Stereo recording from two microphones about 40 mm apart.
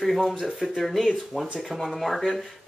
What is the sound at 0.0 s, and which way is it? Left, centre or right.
Speech, centre.